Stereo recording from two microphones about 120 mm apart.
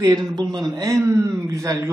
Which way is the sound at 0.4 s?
35° right (ahead or behind).